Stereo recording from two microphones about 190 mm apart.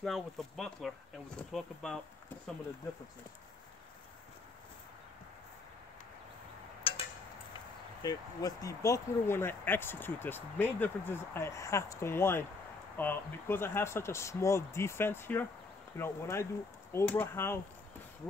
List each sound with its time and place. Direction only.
0.0 s speech: centre (ahead or behind)
6.8 s a sound: 30° left (ahead or behind)
8.0 s speech: 20° left (ahead or behind)